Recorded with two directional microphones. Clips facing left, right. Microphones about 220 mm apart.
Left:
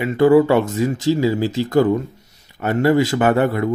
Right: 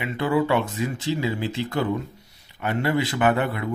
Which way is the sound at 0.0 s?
40° left (ahead or behind).